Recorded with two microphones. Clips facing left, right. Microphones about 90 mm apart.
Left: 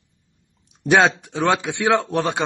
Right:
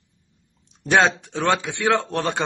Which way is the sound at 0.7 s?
5° left (ahead or behind).